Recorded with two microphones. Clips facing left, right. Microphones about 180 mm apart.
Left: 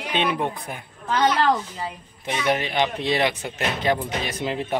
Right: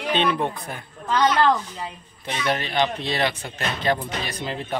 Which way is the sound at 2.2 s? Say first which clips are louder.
Left 2 dB; 15° left (ahead or behind).